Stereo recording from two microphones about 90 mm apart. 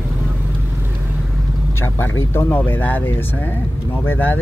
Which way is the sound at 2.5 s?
20° left (ahead or behind).